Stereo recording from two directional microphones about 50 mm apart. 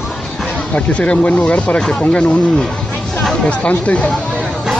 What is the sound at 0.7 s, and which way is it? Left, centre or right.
Speech, left.